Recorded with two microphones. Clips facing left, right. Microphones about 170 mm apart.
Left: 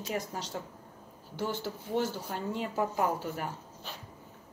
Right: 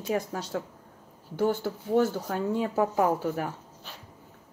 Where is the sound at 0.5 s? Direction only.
90° right.